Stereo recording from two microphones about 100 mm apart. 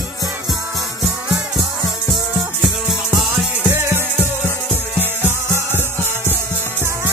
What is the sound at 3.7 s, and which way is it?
Music, 25° right (ahead or behind).